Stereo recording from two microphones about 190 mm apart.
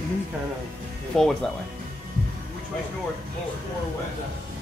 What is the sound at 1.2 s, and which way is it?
Speech, centre (ahead or behind).